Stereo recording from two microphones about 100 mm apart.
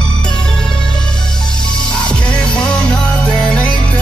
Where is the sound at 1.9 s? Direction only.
10° left (ahead or behind).